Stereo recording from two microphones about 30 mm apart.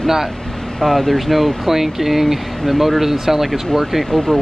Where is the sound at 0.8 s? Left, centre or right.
Centre.